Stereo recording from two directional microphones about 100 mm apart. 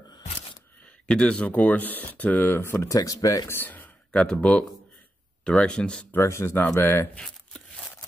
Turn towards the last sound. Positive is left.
turn(degrees=5)  # may be behind; listen again after turning